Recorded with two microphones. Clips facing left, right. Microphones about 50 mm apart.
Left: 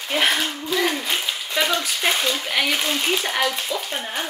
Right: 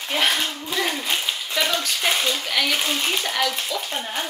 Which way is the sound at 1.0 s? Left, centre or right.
Centre.